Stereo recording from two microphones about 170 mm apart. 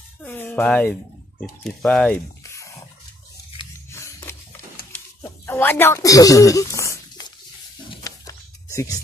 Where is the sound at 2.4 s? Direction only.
15° left (ahead or behind).